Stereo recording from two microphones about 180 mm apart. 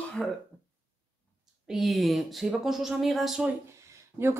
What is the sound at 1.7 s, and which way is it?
A woman's voice, centre (ahead or behind).